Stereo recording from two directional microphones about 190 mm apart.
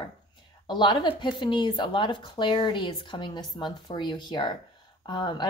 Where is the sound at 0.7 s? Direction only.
25° left (ahead or behind).